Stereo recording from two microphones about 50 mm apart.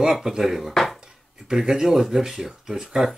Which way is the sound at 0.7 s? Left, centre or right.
Centre.